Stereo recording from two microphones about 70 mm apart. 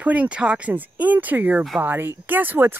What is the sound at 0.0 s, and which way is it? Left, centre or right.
Speech, centre.